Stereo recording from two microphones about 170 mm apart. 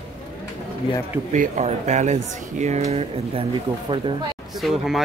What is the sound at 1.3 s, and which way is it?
Speech, 45° right (ahead or behind).